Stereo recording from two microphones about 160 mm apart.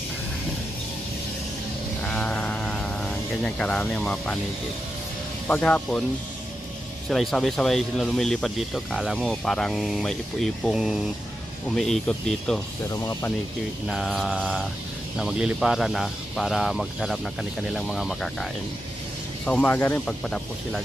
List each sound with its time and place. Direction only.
2.0 s a sound: 5° left (ahead or behind)
5.5 s speech: 10° left (ahead or behind)
7.1 s speech: 5° left (ahead or behind)
12.9 s speech: 20° left (ahead or behind)
13.8 s speech: centre (ahead or behind)
20.2 s speech: 5° left (ahead or behind)